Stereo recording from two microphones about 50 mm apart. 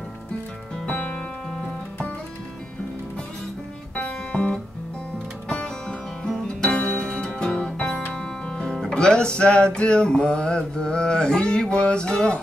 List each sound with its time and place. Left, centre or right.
0.8 s music: left
3.9 s music: left